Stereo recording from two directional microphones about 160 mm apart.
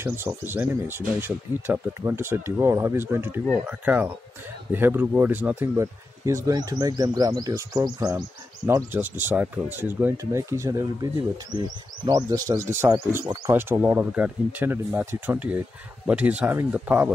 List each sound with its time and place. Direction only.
0.0 s speech: 15° right (ahead or behind)
12.1 s speech: 20° right (ahead or behind)